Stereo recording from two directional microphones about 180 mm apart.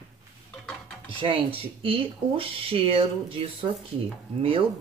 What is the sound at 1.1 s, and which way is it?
Speech, 30° right (ahead or behind).